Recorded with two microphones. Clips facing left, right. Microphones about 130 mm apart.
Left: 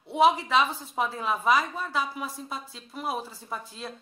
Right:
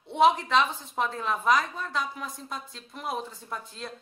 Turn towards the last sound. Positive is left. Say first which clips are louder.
# left 1 dB
turn(degrees=0)  # may be behind; listen again after turning